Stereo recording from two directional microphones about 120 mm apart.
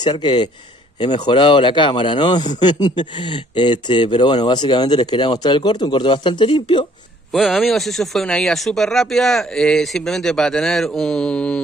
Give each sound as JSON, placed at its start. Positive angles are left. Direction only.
{"t": 0.0, "sound": "a man's voice", "side_deg": 40}
{"t": 7.3, "sound": "speech", "side_deg": 0}